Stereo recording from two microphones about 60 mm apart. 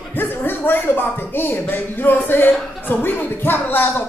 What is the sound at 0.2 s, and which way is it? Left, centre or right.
A man's voice, left.